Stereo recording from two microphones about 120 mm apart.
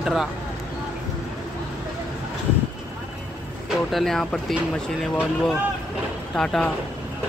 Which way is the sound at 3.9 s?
5° left (ahead or behind).